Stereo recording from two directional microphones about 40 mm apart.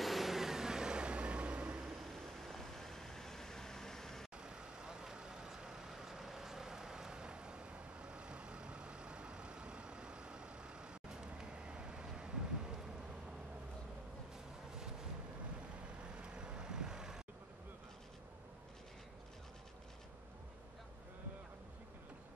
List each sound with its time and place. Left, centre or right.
0.0 s vehicle: centre; by 1.9 s right
2.1 s vehicle: centre
4.4 s vehicle: centre
16.2 s vehicle: right